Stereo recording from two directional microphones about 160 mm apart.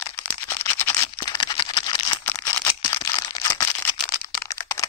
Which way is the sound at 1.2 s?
25° left (ahead or behind).